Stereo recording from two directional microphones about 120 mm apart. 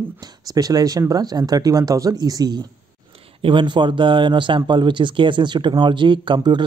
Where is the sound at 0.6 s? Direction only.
30° right (ahead or behind).